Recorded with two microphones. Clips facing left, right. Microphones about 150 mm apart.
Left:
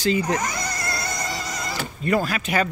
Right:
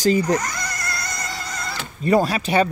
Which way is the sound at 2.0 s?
35° right (ahead or behind).